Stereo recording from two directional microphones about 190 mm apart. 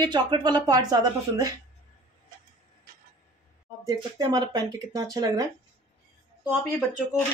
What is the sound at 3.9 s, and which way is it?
Speech, 20° right (ahead or behind).